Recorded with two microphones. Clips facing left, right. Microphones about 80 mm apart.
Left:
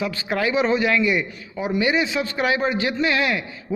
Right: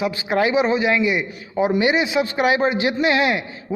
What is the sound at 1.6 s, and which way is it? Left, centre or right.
A man's voice, right.